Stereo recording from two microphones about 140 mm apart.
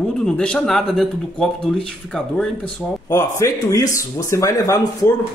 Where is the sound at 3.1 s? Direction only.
20° left (ahead or behind).